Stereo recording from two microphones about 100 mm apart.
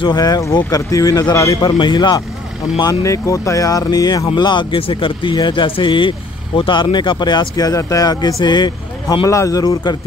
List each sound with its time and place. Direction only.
0.0 s speech: 40° left (ahead or behind)
1.6 s speech: 50° left (ahead or behind)
2.8 s speech: 35° left (ahead or behind)
4.4 s speech: 50° left (ahead or behind)
9.3 s speech: 35° left (ahead or behind)